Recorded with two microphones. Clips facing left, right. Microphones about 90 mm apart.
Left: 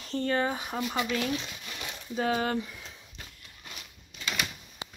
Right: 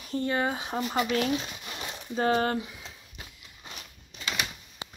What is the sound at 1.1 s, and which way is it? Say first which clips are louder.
Speech: right 3 dB; 40° right (ahead or behind).